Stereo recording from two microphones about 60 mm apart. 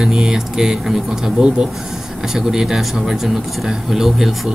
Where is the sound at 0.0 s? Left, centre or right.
Centre.